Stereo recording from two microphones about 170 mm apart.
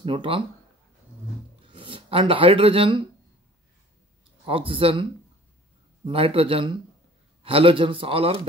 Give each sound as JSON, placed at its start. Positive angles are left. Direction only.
{"t": 0.0, "sound": "a man's voice", "side_deg": -30}
{"t": 1.7, "sound": "speech", "side_deg": -30}
{"t": 4.5, "sound": "a man's voice", "side_deg": -30}
{"t": 6.0, "sound": "a man's voice", "side_deg": -35}